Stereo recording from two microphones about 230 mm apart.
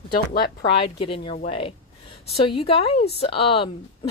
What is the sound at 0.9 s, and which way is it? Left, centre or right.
Speech, left.